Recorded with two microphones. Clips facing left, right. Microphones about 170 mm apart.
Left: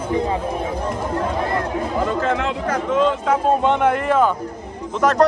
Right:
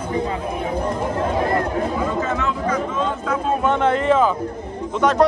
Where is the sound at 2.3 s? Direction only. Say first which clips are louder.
Even; 75° left (ahead or behind).